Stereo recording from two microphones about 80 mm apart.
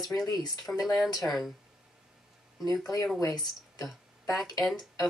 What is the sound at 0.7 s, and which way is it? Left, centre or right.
Speech, centre.